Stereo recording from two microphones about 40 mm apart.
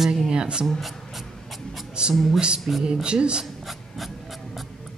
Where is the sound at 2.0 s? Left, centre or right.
Right.